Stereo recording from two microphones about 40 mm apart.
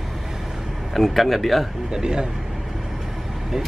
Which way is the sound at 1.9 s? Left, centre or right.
Centre.